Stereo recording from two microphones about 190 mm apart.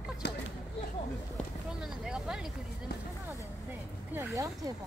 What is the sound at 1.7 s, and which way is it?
Vehicle, 5° right (ahead or behind).